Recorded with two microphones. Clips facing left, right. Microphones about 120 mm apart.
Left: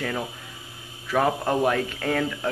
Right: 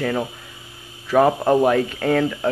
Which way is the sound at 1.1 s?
15° right (ahead or behind).